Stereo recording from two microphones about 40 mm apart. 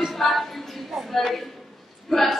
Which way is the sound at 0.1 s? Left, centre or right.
Centre.